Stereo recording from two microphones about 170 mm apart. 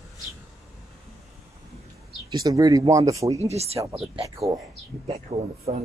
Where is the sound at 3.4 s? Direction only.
40° right (ahead or behind).